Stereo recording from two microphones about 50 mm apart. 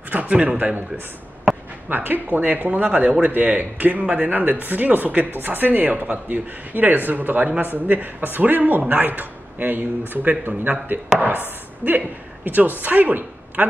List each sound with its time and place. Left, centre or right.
0.1 s a man's voice: right
1.9 s speech: right
12.4 s a woman's voice: right